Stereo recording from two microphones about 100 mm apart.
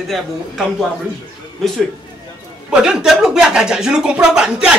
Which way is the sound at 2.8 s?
5° right (ahead or behind).